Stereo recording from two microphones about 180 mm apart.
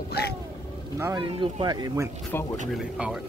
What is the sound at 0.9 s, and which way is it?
Speech, 15° right (ahead or behind).